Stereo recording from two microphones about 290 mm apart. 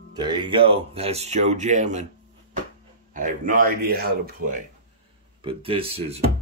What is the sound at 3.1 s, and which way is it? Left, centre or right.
Speech, right.